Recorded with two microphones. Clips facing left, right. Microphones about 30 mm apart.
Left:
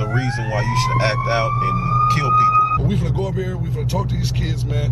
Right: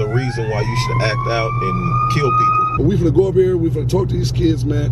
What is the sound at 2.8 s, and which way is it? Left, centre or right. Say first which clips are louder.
Speech: right 7 dB; left.